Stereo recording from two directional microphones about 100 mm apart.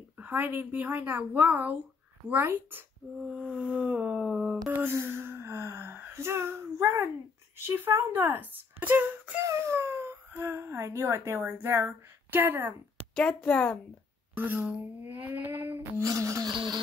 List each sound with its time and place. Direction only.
0.2 s speech: 20° right (ahead or behind)
3.3 s a sound: 10° right (ahead or behind)
4.6 s gasp: 20° right (ahead or behind)
7.5 s speech: 20° right (ahead or behind)
9.4 s speech: 30° right (ahead or behind)
13.1 s a woman's voice: 10° left (ahead or behind)
14.3 s speech: 20° right (ahead or behind)
16.0 s a sound: 35° right (ahead or behind)
16.5 s a sound: 45° right (ahead or behind)